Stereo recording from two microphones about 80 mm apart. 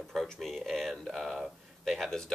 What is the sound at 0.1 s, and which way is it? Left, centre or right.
Speech, centre.